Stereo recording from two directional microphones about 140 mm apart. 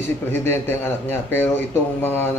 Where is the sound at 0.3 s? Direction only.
15° left (ahead or behind).